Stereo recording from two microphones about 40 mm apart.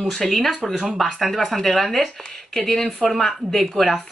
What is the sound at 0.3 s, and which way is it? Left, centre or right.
Speech, centre.